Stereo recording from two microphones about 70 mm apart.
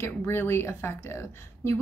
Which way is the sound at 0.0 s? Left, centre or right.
Left.